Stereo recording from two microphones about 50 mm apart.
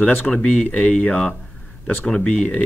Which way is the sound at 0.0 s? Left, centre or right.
Left.